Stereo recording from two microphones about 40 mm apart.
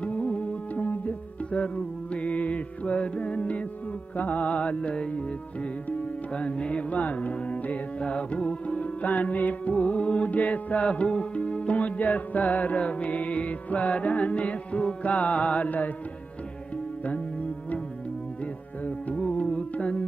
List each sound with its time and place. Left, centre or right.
0.0 s music: left
6.9 s music: left
10.9 s music: left
17.0 s music: left